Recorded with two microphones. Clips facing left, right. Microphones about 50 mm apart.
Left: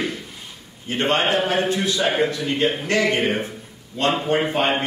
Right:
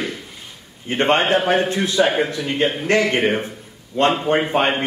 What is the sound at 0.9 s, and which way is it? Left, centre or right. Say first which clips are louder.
A man's voice: right 3 dB; right.